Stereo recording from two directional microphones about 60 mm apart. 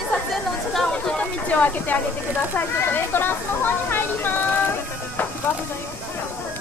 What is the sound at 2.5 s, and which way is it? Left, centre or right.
Speech, left.